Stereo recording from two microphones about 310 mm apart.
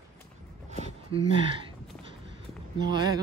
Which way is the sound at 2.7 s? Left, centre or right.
Centre.